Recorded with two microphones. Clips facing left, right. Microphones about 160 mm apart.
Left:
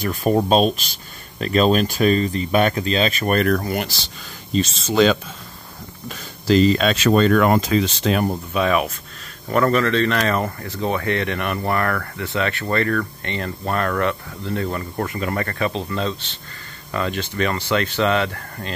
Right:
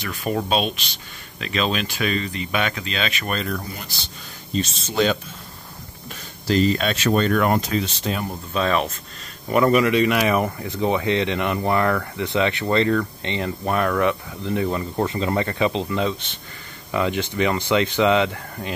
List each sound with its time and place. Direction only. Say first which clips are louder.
0.0 s speech: left 6 dB; 45° left (ahead or behind)
3.3 s speech: left 9 dB; 70° left (ahead or behind)
8.5 s speech: left 1 dB; 10° left (ahead or behind)
9.5 s speech: right 1 dB; 10° right (ahead or behind)